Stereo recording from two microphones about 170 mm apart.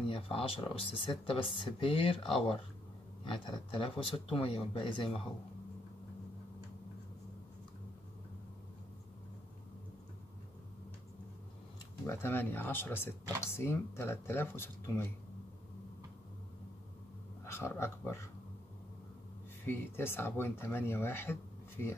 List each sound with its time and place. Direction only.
0.1 s speech: 35° left (ahead or behind)
3.3 s speech: 30° left (ahead or behind)
12.1 s speech: 15° left (ahead or behind)
17.5 s speech: 15° left (ahead or behind)
19.6 s speech: 10° left (ahead or behind)